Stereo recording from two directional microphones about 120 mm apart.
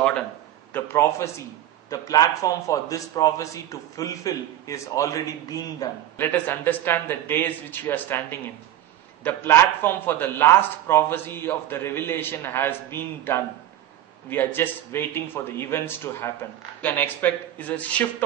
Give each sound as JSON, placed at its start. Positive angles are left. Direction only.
{"t": 0.7, "sound": "a man's voice", "side_deg": 20}
{"t": 6.1, "sound": "a man's voice", "side_deg": 15}